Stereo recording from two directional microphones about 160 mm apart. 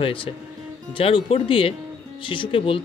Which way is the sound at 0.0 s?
35° left (ahead or behind).